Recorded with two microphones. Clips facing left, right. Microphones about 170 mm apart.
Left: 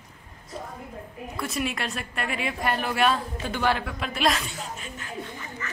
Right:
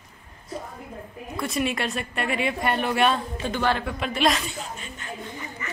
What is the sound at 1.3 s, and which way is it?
A woman's voice, centre (ahead or behind).